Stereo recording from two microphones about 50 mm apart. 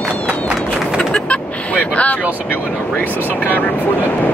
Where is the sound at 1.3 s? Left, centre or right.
Left.